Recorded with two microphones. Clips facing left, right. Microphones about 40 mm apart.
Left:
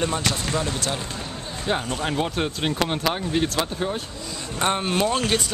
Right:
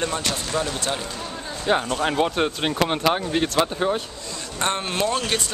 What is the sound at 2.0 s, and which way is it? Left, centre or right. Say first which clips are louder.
Speech: right 4 dB; centre.